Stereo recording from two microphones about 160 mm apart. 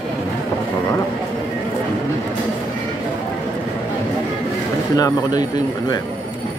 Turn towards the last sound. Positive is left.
turn(degrees=25)  # may be behind; listen again after turning